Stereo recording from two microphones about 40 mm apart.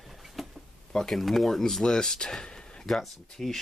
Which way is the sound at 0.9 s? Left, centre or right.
Centre.